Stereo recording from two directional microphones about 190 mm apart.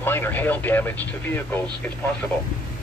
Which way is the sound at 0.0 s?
10° left (ahead or behind).